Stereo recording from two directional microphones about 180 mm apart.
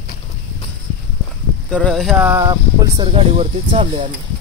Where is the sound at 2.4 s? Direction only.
25° right (ahead or behind).